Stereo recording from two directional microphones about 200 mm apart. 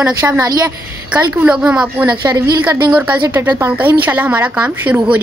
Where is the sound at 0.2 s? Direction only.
15° right (ahead or behind).